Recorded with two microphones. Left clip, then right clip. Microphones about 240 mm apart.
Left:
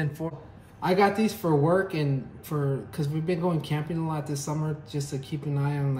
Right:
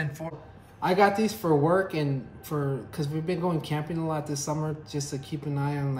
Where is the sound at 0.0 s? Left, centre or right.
Centre.